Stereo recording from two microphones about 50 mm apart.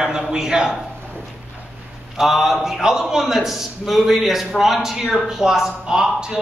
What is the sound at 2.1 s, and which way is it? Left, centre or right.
A man's voice, centre.